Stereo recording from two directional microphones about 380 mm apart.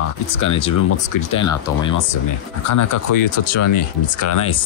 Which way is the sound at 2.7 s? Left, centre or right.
Left.